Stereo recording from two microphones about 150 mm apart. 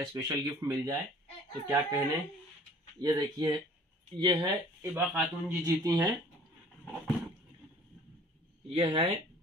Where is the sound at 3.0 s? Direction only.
25° right (ahead or behind).